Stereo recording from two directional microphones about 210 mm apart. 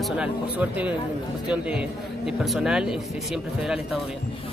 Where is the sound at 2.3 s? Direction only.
Centre (ahead or behind).